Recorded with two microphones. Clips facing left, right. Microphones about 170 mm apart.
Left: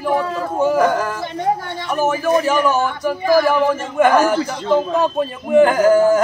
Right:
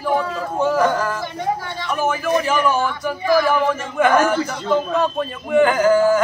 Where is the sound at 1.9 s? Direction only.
40° left (ahead or behind).